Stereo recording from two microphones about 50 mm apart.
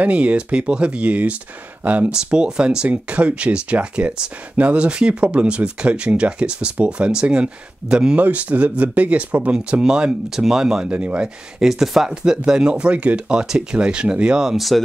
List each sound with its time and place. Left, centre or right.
0.0 s speech: right
2.1 s speech: centre
8.2 s speech: right
9.5 s speech: centre
10.9 s speech: right
11.6 s speech: centre
12.1 s speech: centre